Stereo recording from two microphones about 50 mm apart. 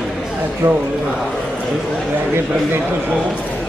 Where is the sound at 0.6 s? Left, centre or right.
Right.